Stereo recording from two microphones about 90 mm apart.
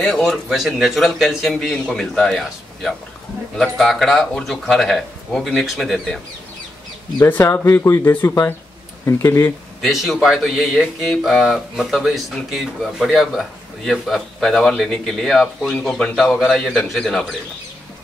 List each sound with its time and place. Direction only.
0.2 s speech: centre (ahead or behind)
7.2 s speech: 25° left (ahead or behind)
9.8 s speech: centre (ahead or behind)